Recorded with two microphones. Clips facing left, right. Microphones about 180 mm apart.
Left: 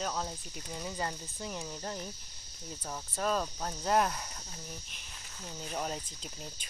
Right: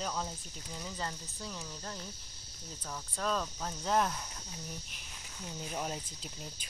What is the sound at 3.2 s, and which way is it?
Speech, 10° left (ahead or behind).